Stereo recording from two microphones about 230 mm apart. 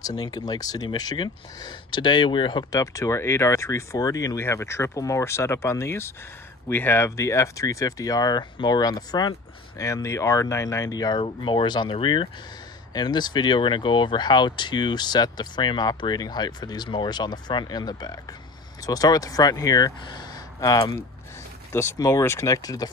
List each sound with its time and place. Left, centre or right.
0.0 s speech: centre